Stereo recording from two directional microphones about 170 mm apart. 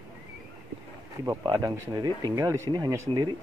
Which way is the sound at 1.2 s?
20° right (ahead or behind).